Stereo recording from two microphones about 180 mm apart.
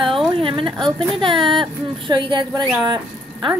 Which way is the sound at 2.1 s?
25° right (ahead or behind).